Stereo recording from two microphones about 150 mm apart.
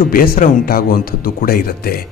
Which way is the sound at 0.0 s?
75° left (ahead or behind).